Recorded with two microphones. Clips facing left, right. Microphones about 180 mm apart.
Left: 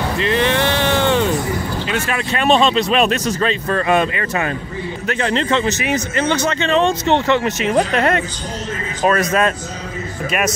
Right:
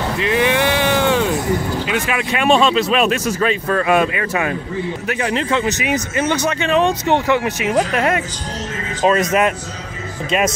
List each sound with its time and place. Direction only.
0.2 s vehicle: 10° right (ahead or behind)
1.9 s speech: 10° right (ahead or behind)
9.0 s speech: 20° right (ahead or behind)